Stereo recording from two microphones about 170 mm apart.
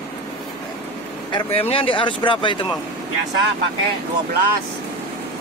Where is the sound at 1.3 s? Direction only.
35° left (ahead or behind).